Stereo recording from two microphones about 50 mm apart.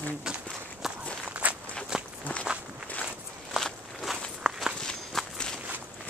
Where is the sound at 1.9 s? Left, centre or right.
Centre.